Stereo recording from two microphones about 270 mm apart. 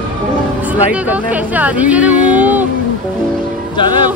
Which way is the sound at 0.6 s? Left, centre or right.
Centre.